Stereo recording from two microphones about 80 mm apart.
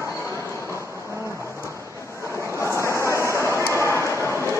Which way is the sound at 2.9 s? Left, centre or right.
Right.